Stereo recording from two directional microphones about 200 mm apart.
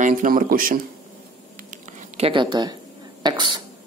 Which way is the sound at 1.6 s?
40° right (ahead or behind).